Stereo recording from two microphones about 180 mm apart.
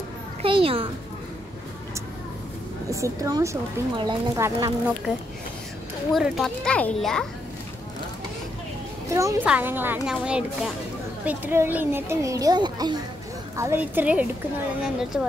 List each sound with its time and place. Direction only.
0.4 s a woman's voice: 30° right (ahead or behind)
2.9 s speech: 20° right (ahead or behind)
6.1 s speech: centre (ahead or behind)
9.1 s speech: 15° right (ahead or behind)
13.6 s speech: 15° right (ahead or behind)